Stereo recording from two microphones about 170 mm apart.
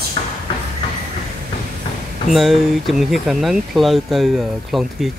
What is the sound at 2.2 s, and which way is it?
Speech, centre (ahead or behind).